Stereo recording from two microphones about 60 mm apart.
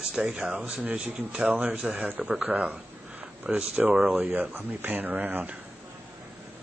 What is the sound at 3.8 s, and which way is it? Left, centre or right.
Speech, right.